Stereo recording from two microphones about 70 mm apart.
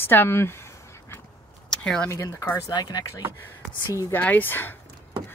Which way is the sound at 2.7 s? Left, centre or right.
Left.